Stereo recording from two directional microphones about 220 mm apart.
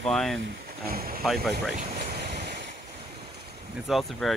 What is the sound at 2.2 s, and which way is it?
Waves, 45° right (ahead or behind).